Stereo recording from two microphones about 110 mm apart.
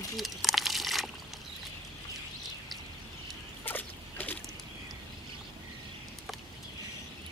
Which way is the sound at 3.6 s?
15° left (ahead or behind).